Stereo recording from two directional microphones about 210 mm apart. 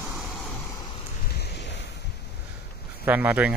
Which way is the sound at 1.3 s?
55° left (ahead or behind).